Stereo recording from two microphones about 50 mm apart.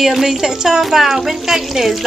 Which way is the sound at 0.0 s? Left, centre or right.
Centre.